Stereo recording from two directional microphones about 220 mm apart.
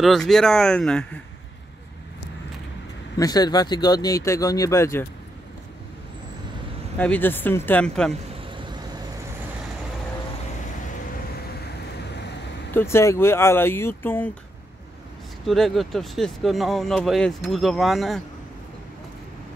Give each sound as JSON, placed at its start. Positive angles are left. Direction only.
{"t": 0.0, "sound": "speech", "side_deg": 0}
{"t": 3.2, "sound": "speech", "side_deg": 15}
{"t": 7.0, "sound": "speech", "side_deg": 10}
{"t": 8.1, "sound": "vehicle", "side_deg": -20}
{"t": 12.7, "sound": "speech", "side_deg": 10}
{"t": 15.4, "sound": "speech", "side_deg": 0}